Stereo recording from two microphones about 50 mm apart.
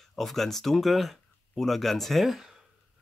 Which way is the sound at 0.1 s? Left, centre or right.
Centre.